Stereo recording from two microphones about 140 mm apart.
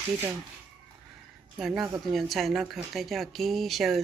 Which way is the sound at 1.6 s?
Centre (ahead or behind).